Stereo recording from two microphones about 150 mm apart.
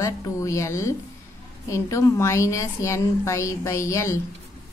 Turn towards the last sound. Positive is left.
turn(degrees=20)  # may be behind; listen again after turning